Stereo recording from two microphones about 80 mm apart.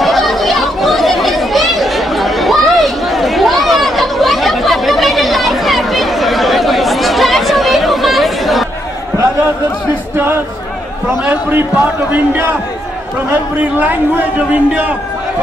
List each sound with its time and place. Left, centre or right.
0.0 s chatter: centre
11.2 s a sound: right
13.3 s a man's voice: right